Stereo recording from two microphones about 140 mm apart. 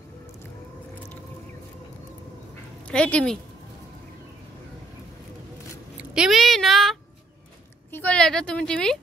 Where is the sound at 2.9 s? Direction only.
10° left (ahead or behind).